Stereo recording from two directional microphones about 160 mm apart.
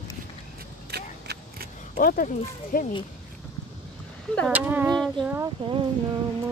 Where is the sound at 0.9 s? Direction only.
90° right.